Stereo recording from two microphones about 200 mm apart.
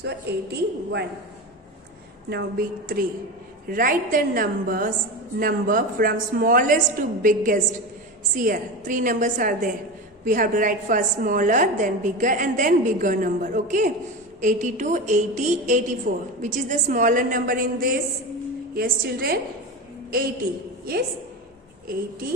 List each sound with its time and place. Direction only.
0.0 s a woman's voice: 55° right (ahead or behind)
2.2 s a woman's voice: 50° right (ahead or behind)